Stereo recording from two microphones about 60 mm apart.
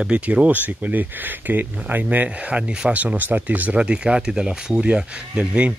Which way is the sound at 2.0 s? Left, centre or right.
Right.